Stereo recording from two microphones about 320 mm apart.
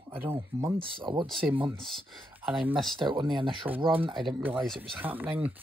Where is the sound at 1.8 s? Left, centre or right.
Centre.